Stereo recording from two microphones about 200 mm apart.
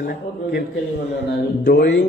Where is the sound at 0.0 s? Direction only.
55° left (ahead or behind).